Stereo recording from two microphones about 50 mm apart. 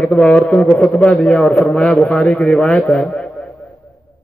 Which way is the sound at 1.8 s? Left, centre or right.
Centre.